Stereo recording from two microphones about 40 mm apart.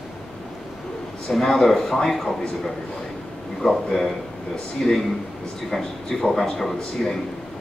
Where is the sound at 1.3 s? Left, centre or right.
Centre.